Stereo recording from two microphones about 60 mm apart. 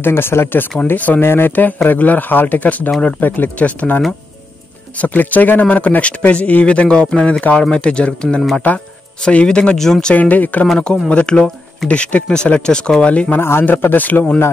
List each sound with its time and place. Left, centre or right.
0.0 s speech: left
0.9 s speech: left
1.2 s speech: left; by 10.1 s centre
10.1 s speech: left
13.4 s speech: left